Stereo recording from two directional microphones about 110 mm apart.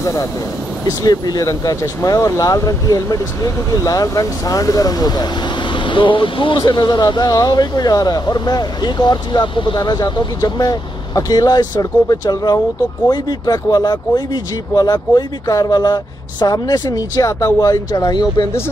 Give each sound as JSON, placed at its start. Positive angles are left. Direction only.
{"t": 0.0, "sound": "speech", "side_deg": 30}
{"t": 5.9, "sound": "speech", "side_deg": 50}